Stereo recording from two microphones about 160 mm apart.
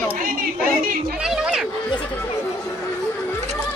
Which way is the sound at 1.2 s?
5° right (ahead or behind).